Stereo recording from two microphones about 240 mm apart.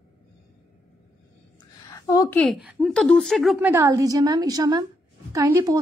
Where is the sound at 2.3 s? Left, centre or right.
Centre.